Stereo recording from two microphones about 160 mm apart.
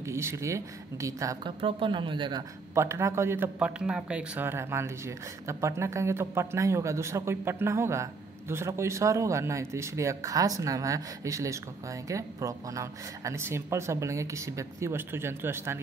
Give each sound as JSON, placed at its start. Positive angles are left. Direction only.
{"t": 0.0, "sound": "a woman's voice", "side_deg": -15}
{"t": 1.6, "sound": "speech", "side_deg": -30}
{"t": 2.7, "sound": "speech", "side_deg": -15}